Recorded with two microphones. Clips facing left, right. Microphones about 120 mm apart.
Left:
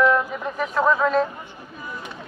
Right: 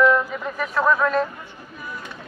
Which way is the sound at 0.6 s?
15° left (ahead or behind).